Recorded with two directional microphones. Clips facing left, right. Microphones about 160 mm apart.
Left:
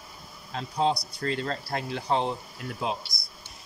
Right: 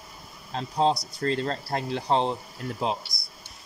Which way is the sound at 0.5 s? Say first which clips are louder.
Right 2 dB; 35° right (ahead or behind).